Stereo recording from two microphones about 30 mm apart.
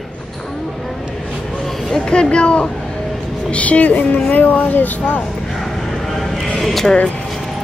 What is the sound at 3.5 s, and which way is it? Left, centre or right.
Speech, left.